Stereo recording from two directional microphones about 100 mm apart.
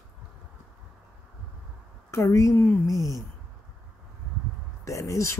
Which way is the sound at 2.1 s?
30° left (ahead or behind).